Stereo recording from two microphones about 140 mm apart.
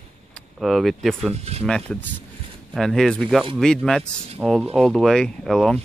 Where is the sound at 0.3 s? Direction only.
Centre (ahead or behind).